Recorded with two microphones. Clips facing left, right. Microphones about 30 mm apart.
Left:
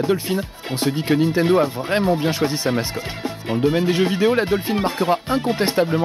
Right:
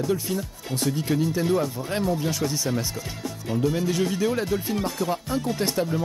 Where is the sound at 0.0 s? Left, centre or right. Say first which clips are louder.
Left 5 dB; left.